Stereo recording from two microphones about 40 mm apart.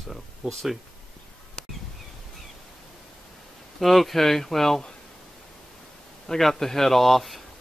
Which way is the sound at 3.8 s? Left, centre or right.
Centre.